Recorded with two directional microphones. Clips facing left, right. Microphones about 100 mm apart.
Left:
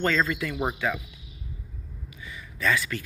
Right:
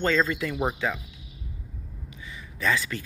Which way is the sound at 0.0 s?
20° right (ahead or behind).